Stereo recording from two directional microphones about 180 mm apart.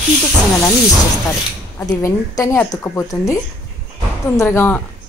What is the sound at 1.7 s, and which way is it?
A woman's voice, 15° left (ahead or behind).